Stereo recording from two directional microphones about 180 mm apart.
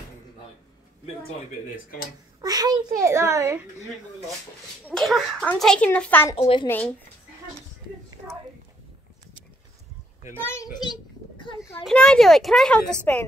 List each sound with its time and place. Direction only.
2.4 s a child's voice: 20° right (ahead or behind)
4.8 s a child's voice: 5° left (ahead or behind)
6.3 s a child's voice: 30° left (ahead or behind)
10.4 s a child's voice: 15° left (ahead or behind)
11.8 s a child's voice: 5° left (ahead or behind)